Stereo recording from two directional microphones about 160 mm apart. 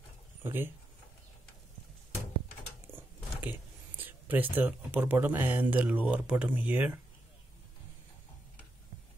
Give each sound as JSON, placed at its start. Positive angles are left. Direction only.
{"t": 0.4, "sound": "speech", "side_deg": -15}
{"t": 3.0, "sound": "speech", "side_deg": -10}